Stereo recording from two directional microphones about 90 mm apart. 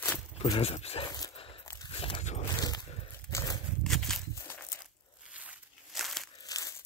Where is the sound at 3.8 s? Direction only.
5° left (ahead or behind).